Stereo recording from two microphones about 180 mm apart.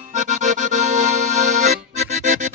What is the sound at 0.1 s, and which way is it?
Accordion, 40° right (ahead or behind).